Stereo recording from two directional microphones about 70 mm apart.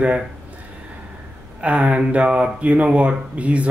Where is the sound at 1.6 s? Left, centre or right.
Centre.